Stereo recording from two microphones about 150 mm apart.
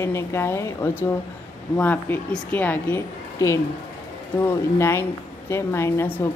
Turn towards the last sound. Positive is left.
turn(degrees=15)  # may be behind; listen again after turning